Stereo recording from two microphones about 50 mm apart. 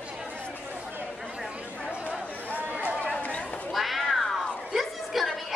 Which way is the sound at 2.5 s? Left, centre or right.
Right.